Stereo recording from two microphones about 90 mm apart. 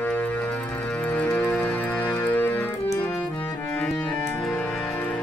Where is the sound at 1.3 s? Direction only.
15° left (ahead or behind).